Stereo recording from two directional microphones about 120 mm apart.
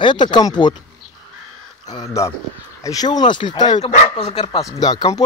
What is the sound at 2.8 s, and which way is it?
Speech, 35° left (ahead or behind).